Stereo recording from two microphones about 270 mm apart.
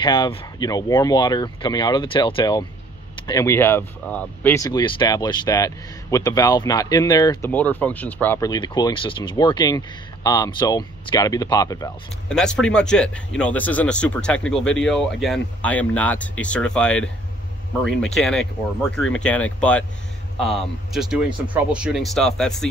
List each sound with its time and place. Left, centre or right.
0.0 s speech: centre
12.4 s speech: centre